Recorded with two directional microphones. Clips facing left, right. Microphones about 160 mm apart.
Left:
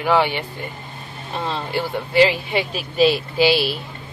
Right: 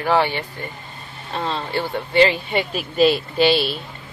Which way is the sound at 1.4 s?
10° left (ahead or behind).